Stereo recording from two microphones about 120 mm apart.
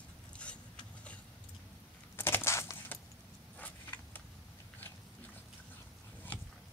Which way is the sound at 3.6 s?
15° left (ahead or behind).